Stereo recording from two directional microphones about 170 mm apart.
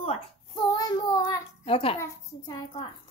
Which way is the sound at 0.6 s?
25° left (ahead or behind).